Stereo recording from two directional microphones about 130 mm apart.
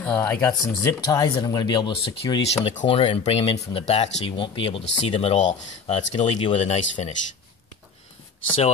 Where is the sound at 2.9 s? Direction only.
45° left (ahead or behind).